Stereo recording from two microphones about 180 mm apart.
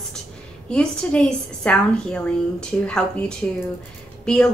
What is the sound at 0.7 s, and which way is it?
A woman's voice, 5° left (ahead or behind).